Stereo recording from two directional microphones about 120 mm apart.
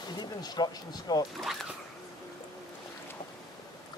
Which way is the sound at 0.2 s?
35° left (ahead or behind).